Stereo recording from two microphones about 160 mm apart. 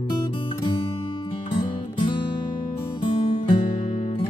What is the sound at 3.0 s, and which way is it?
Music, 30° left (ahead or behind).